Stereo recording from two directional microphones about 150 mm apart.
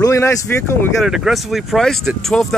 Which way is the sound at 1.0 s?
Centre (ahead or behind).